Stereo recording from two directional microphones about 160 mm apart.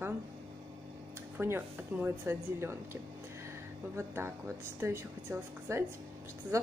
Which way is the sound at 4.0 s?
15° right (ahead or behind).